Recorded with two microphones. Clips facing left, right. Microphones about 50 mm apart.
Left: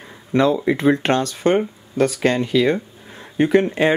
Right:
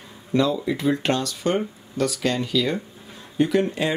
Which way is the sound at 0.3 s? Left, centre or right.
Left.